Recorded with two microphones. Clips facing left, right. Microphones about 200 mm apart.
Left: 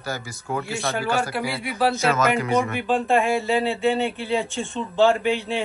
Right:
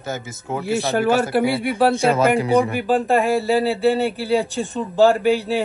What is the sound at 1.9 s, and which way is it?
Speech, 30° right (ahead or behind).